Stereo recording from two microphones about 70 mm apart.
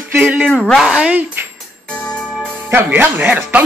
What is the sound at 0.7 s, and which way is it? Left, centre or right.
Speech, centre.